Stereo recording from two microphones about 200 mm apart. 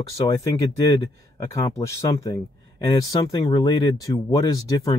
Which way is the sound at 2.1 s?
15° left (ahead or behind).